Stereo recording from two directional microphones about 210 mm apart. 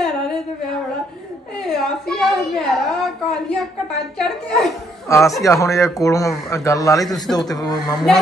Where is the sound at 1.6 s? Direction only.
Centre (ahead or behind).